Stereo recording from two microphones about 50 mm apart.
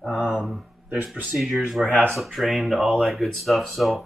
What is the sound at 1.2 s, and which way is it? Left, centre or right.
Speech, centre.